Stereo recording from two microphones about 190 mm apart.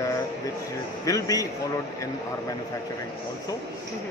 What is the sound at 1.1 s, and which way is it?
Speech, 15° left (ahead or behind).